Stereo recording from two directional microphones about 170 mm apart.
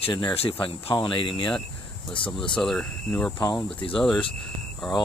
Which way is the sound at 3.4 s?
20° left (ahead or behind).